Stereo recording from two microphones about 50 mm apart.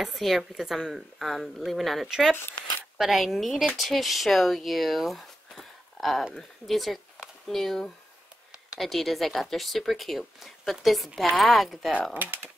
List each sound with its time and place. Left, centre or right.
0.0 s speech: centre
2.0 s speech: centre
12.1 s speech: right